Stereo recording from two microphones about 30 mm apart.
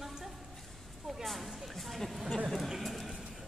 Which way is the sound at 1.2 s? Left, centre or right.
Centre.